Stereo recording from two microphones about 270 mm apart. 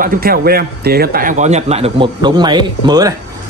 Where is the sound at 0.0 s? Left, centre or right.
Right.